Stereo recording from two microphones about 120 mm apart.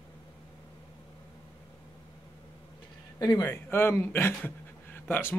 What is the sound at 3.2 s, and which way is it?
Speech, 30° left (ahead or behind).